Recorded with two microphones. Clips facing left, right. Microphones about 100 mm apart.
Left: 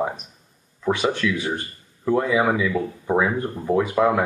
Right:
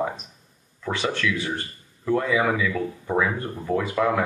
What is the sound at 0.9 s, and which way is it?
Speech, 15° left (ahead or behind).